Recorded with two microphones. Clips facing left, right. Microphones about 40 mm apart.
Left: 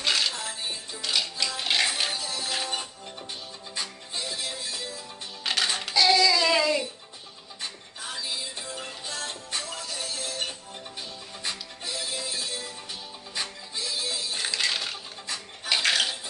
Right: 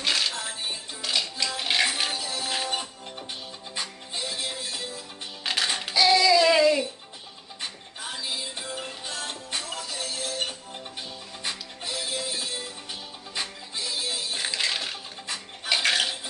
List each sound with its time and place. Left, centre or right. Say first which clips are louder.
0.0 s music: even; centre
0.5 s music: right 1 dB; right
1.0 s music: even; centre; by 4.8 s right
5.4 s music: even; centre
5.8 s child singing: right 1 dB; centre
8.2 s music: right 1 dB; centre
15.2 s a sound: right 1 dB; centre
15.7 s dishes: right 1 dB; centre